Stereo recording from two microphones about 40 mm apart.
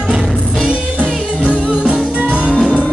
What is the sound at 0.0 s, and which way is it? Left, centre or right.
Music, centre.